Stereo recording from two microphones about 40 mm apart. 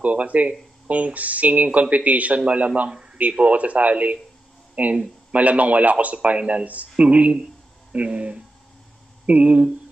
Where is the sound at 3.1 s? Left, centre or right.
Right.